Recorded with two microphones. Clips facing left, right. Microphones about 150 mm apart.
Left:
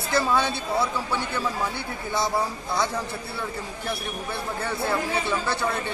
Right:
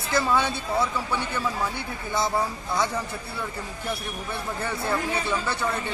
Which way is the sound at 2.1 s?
10° left (ahead or behind).